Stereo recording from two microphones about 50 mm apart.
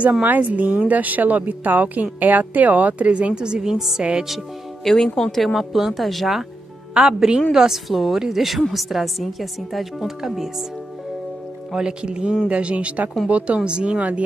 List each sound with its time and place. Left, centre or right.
0.2 s a woman's voice: right; by 4.0 s centre
4.0 s a woman's voice: centre
4.8 s a woman's voice: centre
6.9 s a woman's voice: centre
11.7 s a woman's voice: centre